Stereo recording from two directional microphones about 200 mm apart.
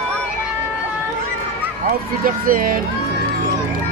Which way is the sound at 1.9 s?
45° right (ahead or behind).